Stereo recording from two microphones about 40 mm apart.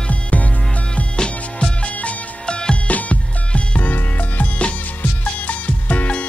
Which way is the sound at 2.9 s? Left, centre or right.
Left.